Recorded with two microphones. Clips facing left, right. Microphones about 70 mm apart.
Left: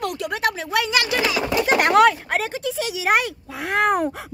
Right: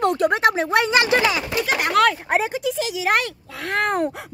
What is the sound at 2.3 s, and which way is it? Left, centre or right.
Speech, centre.